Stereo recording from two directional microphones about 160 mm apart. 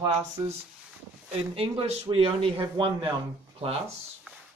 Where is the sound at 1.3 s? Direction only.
40° right (ahead or behind).